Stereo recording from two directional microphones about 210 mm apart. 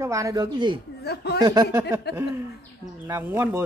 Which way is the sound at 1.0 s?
50° left (ahead or behind).